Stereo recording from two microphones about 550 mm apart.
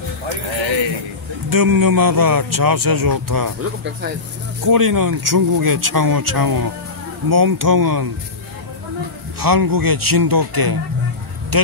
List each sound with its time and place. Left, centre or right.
1.5 s speech: right
4.6 s speech: right
9.4 s speech: right